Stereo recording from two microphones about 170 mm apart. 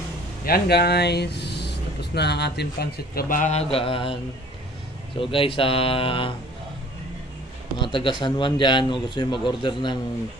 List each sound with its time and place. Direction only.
0.5 s speech: 70° left (ahead or behind); by 3.6 s 45° left (ahead or behind)
3.7 s speech: 30° left (ahead or behind)
5.2 s speech: 30° left (ahead or behind)
7.8 s speech: 30° left (ahead or behind)